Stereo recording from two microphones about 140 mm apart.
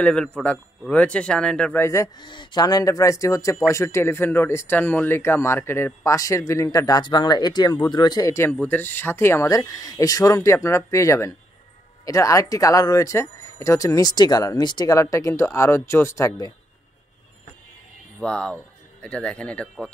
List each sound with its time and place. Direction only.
0.0 s a man's voice: 5° left (ahead or behind)
2.1 s speech: 35° left (ahead or behind)
18.2 s speech: 5° left (ahead or behind)